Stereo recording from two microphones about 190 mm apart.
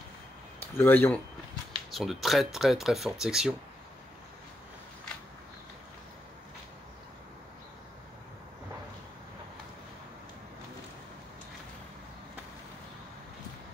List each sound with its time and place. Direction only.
0.6 s speech: 10° left (ahead or behind)